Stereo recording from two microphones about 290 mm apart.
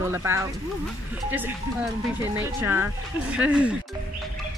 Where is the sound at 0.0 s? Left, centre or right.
Centre.